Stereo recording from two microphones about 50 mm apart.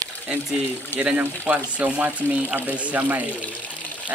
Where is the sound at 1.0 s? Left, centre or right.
Right.